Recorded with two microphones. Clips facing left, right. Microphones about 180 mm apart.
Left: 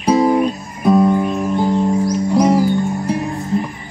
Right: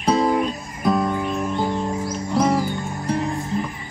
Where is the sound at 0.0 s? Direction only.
20° left (ahead or behind).